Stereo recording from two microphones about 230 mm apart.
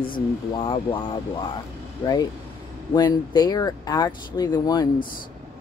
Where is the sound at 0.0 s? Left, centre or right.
Left.